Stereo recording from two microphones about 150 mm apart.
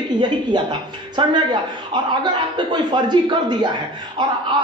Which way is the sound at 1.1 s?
30° right (ahead or behind).